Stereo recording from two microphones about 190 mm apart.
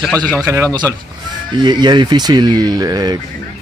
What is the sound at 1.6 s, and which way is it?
Speech, 25° right (ahead or behind).